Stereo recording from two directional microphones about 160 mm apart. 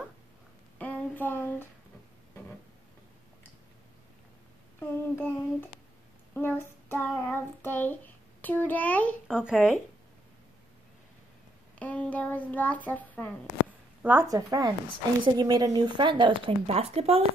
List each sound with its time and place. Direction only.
0.7 s a sound: 10° left (ahead or behind)
4.7 s a child's voice: 10° left (ahead or behind)
6.3 s child singing: 15° left (ahead or behind)
9.3 s speech: 5° right (ahead or behind)
11.8 s a child's voice: 10° left (ahead or behind)
14.0 s a woman's voice: 15° right (ahead or behind); by 17.2 s 40° right (ahead or behind)